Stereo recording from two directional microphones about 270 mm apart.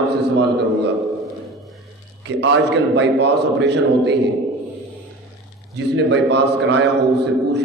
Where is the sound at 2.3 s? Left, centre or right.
Right.